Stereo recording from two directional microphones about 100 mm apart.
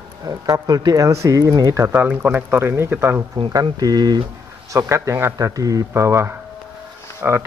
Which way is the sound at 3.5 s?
40° right (ahead or behind).